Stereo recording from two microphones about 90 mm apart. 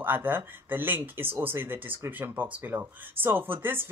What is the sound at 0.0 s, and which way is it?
Speech, 20° right (ahead or behind).